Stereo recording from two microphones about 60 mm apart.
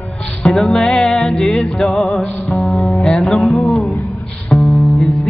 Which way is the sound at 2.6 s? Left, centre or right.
Centre.